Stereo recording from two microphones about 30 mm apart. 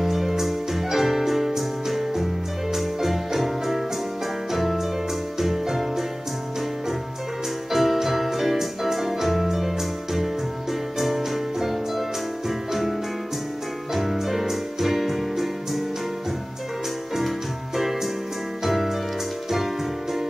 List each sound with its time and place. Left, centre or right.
0.0 s music: centre
7.7 s music: centre
11.0 s music: centre
14.1 s music: centre
17.7 s music: centre